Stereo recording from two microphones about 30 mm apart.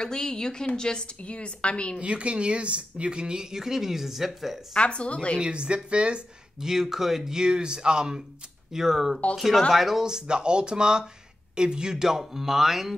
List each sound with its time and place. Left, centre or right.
0.0 s a woman's voice: left
1.2 s a woman's voice: left
2.0 s speech: right
3.5 s speech: centre
4.7 s a woman's voice: left
5.4 s speech: right
6.6 s speech: centre
7.3 s speech: right
8.7 s speech: centre
10.0 s speech: right
12.0 s speech: centre